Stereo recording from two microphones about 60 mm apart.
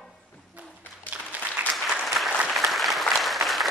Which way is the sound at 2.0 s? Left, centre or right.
Centre.